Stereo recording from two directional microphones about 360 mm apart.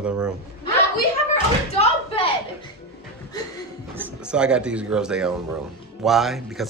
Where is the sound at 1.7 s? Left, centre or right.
Centre.